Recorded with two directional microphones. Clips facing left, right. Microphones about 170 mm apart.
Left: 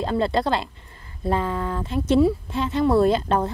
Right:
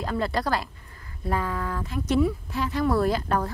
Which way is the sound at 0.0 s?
25° left (ahead or behind).